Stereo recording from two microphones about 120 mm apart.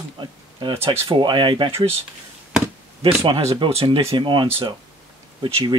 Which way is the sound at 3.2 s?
55° right (ahead or behind).